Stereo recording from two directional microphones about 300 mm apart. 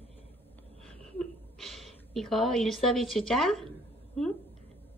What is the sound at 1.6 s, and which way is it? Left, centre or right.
A woman's voice, centre.